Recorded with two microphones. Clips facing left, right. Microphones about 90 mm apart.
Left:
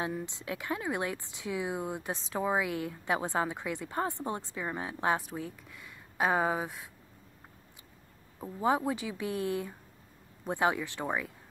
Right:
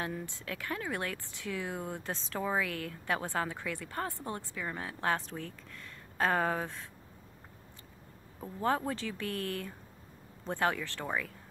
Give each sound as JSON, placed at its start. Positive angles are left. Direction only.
{"t": 0.0, "sound": "speech", "side_deg": 20}
{"t": 8.4, "sound": "speech", "side_deg": 10}